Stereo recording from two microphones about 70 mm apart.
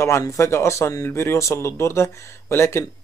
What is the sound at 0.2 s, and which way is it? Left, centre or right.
Speech, left.